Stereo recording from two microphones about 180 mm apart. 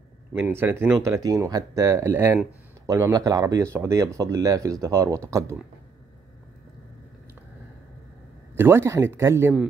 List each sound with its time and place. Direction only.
0.3 s speech: 15° right (ahead or behind)
8.5 s speech: 15° right (ahead or behind)